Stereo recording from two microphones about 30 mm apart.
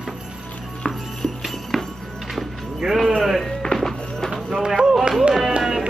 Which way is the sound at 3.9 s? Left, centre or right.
Left.